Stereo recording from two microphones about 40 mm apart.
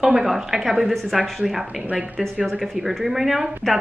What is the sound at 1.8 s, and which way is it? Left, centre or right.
Speech, right.